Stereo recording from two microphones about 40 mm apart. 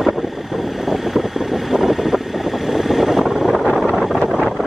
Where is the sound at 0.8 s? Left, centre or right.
Centre.